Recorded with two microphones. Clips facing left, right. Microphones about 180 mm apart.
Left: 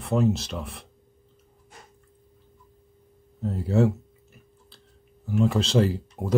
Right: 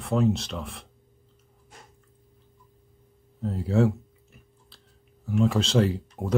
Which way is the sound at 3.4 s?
Centre (ahead or behind).